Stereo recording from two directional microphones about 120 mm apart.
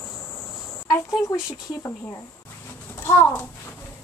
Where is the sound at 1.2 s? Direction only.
30° left (ahead or behind).